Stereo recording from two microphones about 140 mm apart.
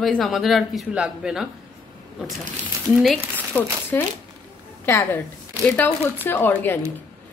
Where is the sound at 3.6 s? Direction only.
10° left (ahead or behind).